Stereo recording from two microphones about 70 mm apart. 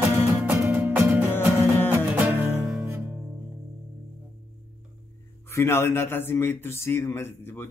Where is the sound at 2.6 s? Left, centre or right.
Centre.